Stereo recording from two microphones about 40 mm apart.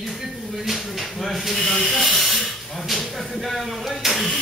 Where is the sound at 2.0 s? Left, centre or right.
Centre.